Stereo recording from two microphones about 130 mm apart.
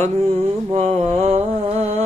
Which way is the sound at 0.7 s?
50° right (ahead or behind).